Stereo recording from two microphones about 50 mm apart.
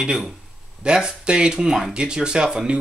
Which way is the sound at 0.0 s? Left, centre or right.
Centre.